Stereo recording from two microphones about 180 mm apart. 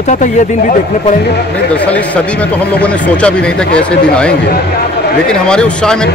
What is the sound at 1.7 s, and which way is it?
Speech, 10° left (ahead or behind).